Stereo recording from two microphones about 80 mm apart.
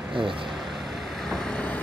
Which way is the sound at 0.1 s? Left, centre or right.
Right.